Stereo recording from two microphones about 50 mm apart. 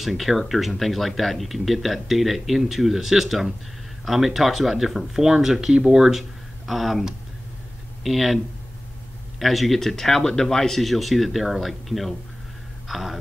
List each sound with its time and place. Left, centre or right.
0.0 s speech: centre
9.4 s speech: centre